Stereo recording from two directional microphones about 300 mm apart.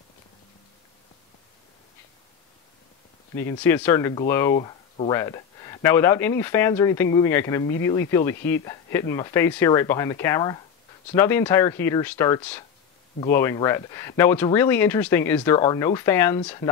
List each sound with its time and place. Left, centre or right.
3.3 s speech: centre